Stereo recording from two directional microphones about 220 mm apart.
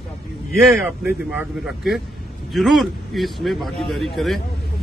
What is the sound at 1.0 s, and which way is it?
Speech, 5° right (ahead or behind).